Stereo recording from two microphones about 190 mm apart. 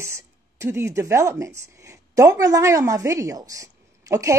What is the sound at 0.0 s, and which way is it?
A woman's voice, 15° right (ahead or behind).